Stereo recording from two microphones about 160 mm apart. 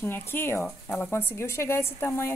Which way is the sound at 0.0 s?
15° left (ahead or behind).